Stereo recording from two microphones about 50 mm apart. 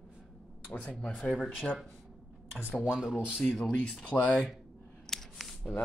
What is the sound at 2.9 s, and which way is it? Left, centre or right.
Speech, centre.